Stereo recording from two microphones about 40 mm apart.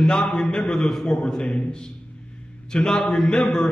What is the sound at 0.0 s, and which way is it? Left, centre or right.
A man's voice, left.